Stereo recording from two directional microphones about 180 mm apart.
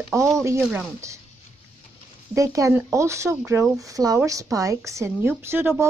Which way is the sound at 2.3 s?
20° right (ahead or behind).